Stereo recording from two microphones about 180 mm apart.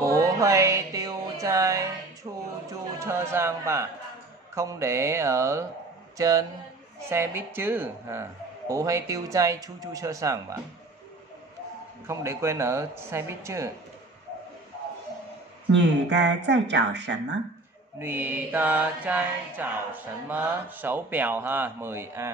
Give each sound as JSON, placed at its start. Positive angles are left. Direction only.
{"t": 0.0, "sound": "music", "side_deg": -20}
{"t": 2.7, "sound": "speech", "side_deg": -15}
{"t": 4.6, "sound": "mantra", "side_deg": -15}
{"t": 6.1, "sound": "speech", "side_deg": -20}
{"t": 7.0, "sound": "mantra", "side_deg": -15}
{"t": 12.1, "sound": "mantra", "side_deg": -15}
{"t": 15.7, "sound": "speech", "side_deg": -70}
{"t": 17.9, "sound": "mantra", "side_deg": -10}